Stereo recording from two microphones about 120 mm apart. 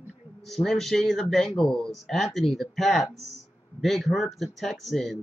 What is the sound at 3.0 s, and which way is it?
Speech, 65° left (ahead or behind).